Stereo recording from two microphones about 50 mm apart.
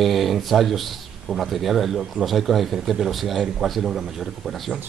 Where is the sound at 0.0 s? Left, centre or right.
Centre.